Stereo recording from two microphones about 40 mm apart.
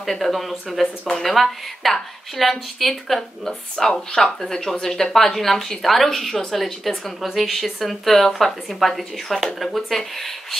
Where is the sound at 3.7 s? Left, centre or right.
Centre.